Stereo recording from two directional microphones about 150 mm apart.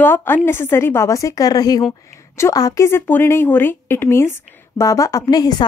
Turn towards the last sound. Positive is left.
turn(degrees=25)  # may be behind; listen again after turning